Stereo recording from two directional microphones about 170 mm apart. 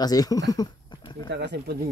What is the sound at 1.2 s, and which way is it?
Speech, 85° right.